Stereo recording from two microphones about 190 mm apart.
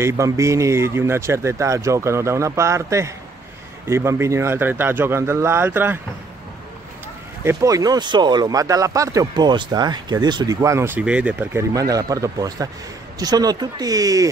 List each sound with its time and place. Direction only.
0.0 s speech: 15° right (ahead or behind)
7.4 s speech: 15° right (ahead or behind)